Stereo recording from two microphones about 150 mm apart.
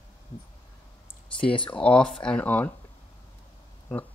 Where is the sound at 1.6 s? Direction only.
5° left (ahead or behind).